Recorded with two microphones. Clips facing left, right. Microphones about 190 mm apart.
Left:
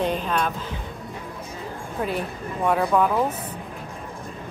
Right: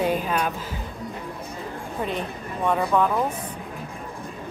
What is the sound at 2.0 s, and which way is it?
A woman's voice, 5° left (ahead or behind).